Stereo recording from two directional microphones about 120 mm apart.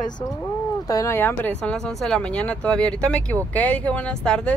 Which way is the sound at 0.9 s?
30° left (ahead or behind).